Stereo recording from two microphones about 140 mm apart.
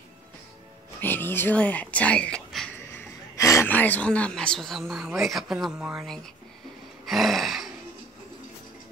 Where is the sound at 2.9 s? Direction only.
20° left (ahead or behind).